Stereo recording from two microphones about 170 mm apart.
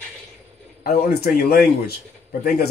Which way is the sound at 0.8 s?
60° left (ahead or behind).